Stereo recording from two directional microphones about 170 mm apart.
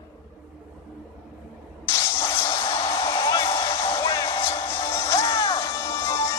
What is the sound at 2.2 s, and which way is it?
Music, 20° left (ahead or behind).